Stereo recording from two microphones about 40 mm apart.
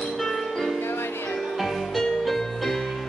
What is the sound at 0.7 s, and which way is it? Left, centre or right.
Music, left.